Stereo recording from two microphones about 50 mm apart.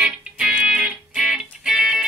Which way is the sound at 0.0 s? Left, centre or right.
Centre.